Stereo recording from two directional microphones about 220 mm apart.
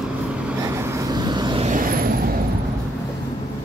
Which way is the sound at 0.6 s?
15° right (ahead or behind).